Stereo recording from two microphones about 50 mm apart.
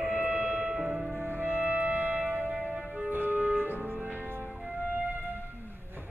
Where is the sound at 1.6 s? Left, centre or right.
Right.